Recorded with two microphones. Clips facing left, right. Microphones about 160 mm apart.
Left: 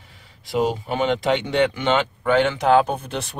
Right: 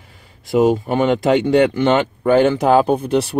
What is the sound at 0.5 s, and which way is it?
Speech, 50° right (ahead or behind).